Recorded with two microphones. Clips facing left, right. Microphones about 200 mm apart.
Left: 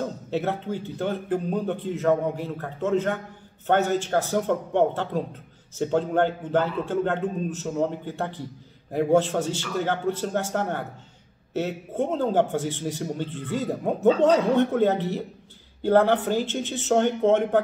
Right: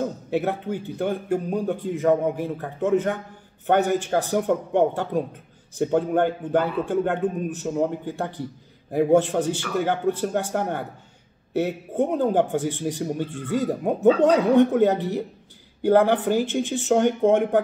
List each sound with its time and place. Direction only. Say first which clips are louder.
0.3 s a man's voice: right 2 dB; 15° right (ahead or behind)